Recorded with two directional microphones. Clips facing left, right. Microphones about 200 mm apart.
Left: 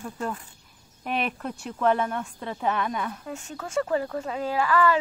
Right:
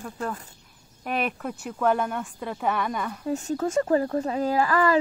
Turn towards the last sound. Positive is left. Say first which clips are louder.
# right 1 dB
turn(degrees=-40)  # may be behind; listen again after turning